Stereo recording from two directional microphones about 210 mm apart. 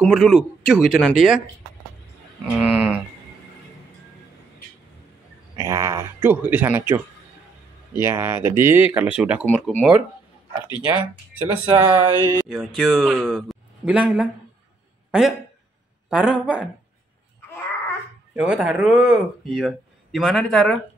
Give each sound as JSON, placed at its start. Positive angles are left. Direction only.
{"t": 0.0, "sound": "speech", "side_deg": 0}
{"t": 2.5, "sound": "speech", "side_deg": -5}
{"t": 5.6, "sound": "speech", "side_deg": -15}
{"t": 8.0, "sound": "speech", "side_deg": -10}
{"t": 9.5, "sound": "speech", "side_deg": 5}
{"t": 10.8, "sound": "speech", "side_deg": -5}
{"t": 12.4, "sound": "speech", "side_deg": 0}
{"t": 18.3, "sound": "speech", "side_deg": -5}